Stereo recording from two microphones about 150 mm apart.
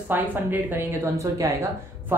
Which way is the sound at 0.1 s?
10° right (ahead or behind).